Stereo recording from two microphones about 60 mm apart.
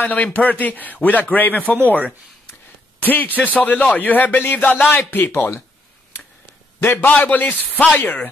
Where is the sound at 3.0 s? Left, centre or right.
Left.